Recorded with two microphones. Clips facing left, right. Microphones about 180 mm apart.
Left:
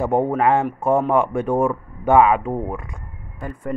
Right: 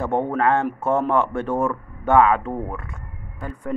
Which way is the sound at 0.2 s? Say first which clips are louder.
Left 2 dB; 15° left (ahead or behind).